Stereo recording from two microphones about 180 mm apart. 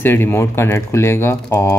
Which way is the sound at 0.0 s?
10° left (ahead or behind).